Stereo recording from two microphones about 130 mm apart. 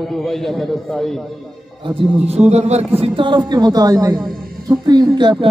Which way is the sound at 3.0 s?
40° right (ahead or behind).